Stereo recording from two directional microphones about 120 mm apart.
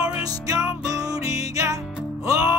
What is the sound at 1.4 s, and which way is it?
Music, 30° right (ahead or behind).